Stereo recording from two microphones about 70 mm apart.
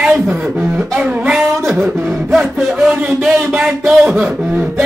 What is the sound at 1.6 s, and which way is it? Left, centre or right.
Speech, centre.